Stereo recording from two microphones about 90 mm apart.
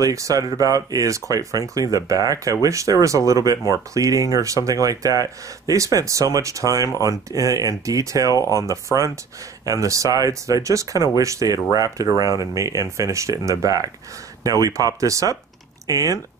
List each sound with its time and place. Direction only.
0.0 s speech: 40° right (ahead or behind)
8.3 s speech: 40° left (ahead or behind)
8.5 s speech: 35° right (ahead or behind)